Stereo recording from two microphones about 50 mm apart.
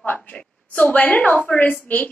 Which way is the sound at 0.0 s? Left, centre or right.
Left.